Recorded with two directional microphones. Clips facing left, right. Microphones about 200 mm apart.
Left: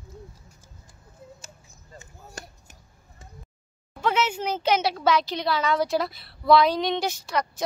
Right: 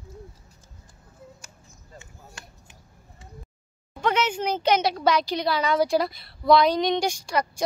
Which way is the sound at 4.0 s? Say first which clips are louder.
Right 1 dB; 5° left (ahead or behind).